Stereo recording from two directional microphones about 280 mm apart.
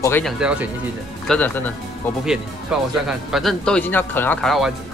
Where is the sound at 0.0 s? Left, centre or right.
Centre.